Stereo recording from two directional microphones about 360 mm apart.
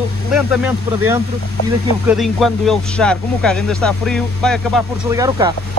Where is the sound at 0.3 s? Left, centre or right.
Centre.